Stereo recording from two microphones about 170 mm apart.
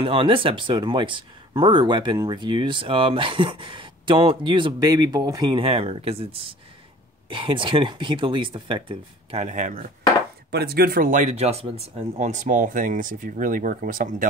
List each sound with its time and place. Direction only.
0.0 s speech: 30° right (ahead or behind)
9.4 s speech: 45° right (ahead or behind)
10.5 s speech: 65° right (ahead or behind)